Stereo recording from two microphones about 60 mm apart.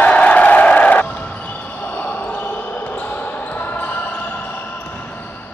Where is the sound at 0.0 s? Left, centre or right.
Left.